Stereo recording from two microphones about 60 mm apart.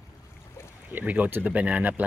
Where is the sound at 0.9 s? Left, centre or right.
Right.